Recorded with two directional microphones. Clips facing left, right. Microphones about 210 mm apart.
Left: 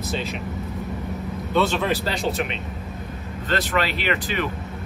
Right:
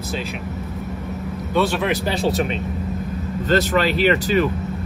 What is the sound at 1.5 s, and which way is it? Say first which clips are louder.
Speech: right 2 dB; 10° right (ahead or behind).